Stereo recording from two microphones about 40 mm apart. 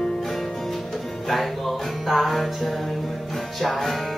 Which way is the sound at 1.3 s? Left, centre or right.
Centre.